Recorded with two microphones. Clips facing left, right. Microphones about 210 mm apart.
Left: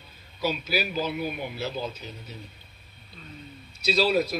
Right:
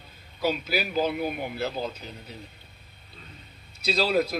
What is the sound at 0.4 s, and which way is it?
A man's voice, 55° right (ahead or behind).